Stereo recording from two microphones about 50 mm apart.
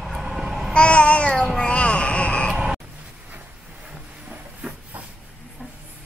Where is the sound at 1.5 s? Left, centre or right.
Left.